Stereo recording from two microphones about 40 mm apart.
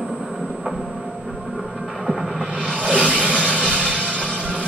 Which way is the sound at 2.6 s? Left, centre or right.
Left.